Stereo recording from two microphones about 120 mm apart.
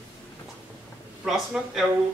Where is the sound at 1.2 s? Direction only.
5° right (ahead or behind).